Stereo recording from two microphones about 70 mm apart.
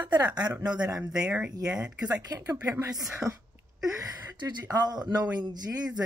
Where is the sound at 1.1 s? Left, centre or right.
Centre.